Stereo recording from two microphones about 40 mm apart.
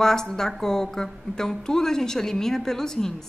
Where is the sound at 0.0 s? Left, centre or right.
Centre.